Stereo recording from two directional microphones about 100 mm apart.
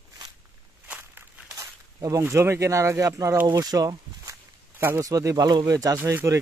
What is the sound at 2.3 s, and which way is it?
Speech, 25° right (ahead or behind).